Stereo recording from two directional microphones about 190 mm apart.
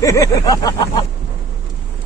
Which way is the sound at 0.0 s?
15° left (ahead or behind).